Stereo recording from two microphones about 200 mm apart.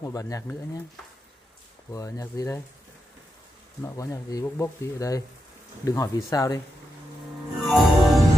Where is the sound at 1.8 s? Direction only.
15° left (ahead or behind).